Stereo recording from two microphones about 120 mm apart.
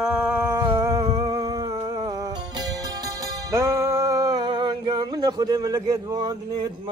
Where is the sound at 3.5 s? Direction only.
25° right (ahead or behind).